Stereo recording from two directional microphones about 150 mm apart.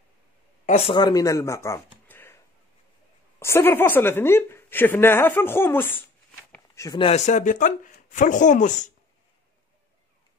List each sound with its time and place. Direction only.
0.7 s speech: 45° left (ahead or behind)
0.9 s speech: 25° left (ahead or behind)
3.3 s a woman's voice: 15° left (ahead or behind)
6.7 s a sound: 20° left (ahead or behind)
7.0 s speech: 45° left (ahead or behind)